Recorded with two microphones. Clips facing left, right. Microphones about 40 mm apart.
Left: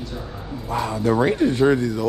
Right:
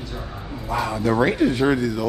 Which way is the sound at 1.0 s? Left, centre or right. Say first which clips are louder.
Left 1 dB; right.